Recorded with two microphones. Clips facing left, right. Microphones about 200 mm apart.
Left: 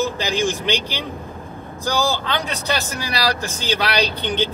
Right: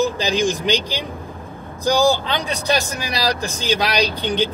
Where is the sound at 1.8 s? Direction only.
15° right (ahead or behind).